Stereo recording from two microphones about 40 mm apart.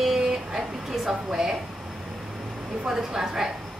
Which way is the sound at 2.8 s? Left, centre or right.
Centre.